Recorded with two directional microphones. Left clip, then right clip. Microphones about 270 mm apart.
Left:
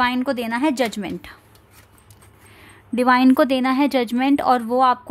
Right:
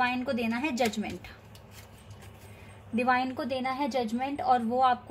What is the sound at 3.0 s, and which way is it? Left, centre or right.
A woman's voice, left.